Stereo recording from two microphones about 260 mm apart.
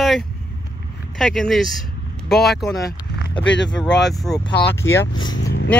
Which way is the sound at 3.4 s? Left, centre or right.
Left.